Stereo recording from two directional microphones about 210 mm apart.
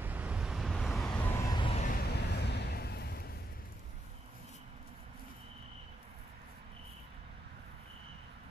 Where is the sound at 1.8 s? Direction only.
50° left (ahead or behind).